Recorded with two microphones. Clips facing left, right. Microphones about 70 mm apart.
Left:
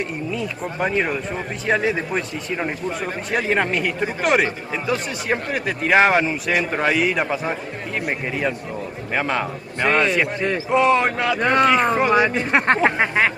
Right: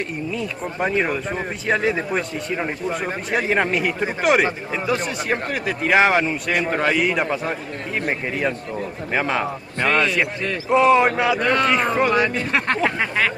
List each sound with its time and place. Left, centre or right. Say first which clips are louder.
0.3 s a man's voice: left 1 dB; centre
11.3 s speech: left 1 dB; left
11.6 s speech: left 2 dB; centre
12.4 s speech: left 3 dB; left